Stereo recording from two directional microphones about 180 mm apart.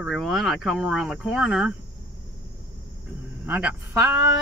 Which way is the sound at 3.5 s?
5° right (ahead or behind).